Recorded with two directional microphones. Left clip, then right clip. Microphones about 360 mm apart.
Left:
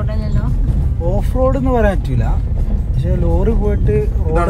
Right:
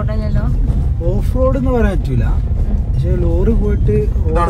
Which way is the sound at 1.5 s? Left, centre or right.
Left.